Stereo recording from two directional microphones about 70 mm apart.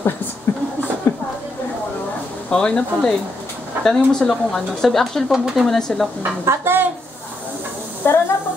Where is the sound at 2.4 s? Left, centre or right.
Centre.